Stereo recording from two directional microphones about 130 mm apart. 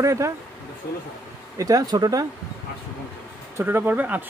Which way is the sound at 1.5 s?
25° right (ahead or behind).